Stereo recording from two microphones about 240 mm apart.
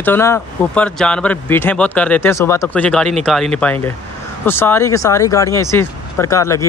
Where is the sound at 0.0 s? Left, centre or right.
Centre.